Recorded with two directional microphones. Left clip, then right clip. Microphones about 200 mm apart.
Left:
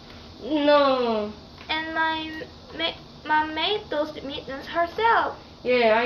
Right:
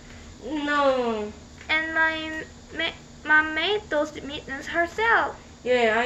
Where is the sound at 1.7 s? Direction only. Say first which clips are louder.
Right 2 dB; 50° right (ahead or behind).